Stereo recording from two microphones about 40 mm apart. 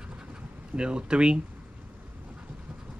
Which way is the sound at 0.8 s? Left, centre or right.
Right.